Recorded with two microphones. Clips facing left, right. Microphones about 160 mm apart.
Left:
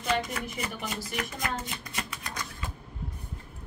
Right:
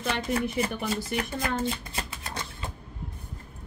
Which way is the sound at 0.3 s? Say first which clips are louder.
Right 8 dB; 30° right (ahead or behind).